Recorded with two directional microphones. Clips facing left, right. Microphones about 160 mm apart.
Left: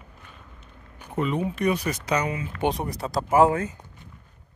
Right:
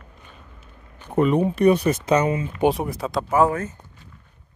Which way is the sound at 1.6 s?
30° right (ahead or behind).